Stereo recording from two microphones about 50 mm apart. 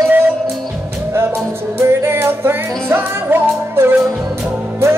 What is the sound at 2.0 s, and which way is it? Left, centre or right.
Music, right.